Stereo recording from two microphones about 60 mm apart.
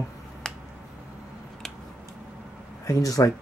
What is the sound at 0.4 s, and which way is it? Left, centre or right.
Finger snapping, centre.